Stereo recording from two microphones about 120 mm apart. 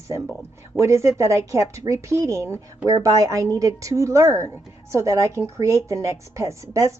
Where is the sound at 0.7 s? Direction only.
25° right (ahead or behind).